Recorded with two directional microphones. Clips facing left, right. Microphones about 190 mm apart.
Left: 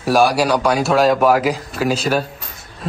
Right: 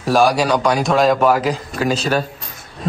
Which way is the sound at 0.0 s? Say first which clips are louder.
Even; 10° left (ahead or behind).